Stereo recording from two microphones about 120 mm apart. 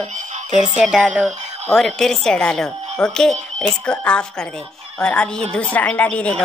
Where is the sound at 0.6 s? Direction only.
5° right (ahead or behind).